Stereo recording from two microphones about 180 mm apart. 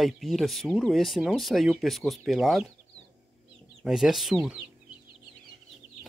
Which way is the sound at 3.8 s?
5° right (ahead or behind).